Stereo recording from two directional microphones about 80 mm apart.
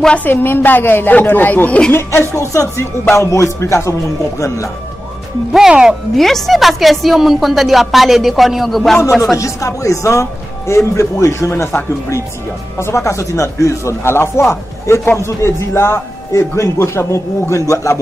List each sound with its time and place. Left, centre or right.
0.2 s a woman's voice: left
2.0 s speech: left
5.5 s speech: centre
6.1 s a woman's voice: centre
9.4 s speech: left